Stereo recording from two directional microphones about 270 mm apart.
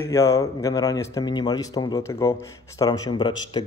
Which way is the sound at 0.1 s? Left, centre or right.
Centre.